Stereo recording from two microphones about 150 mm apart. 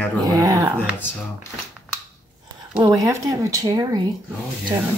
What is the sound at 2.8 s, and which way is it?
Speech, 20° right (ahead or behind).